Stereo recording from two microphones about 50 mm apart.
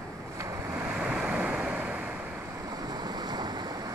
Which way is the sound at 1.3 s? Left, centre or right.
Right.